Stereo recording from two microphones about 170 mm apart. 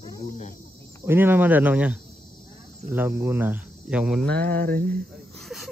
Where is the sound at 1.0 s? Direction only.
15° right (ahead or behind); by 4.4 s 5° left (ahead or behind).